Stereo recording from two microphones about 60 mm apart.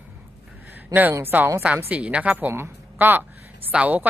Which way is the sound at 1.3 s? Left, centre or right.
Right.